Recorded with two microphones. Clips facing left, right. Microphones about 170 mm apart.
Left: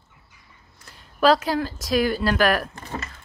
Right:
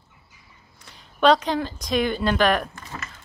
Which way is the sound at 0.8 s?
5° left (ahead or behind).